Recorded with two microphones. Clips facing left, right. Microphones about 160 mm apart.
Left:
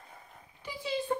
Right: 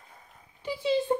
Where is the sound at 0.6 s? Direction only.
25° right (ahead or behind).